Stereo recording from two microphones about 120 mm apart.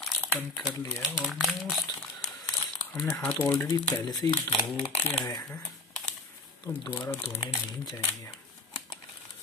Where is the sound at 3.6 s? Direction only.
30° left (ahead or behind).